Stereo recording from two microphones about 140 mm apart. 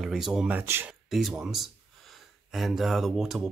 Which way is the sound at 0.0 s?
5° right (ahead or behind).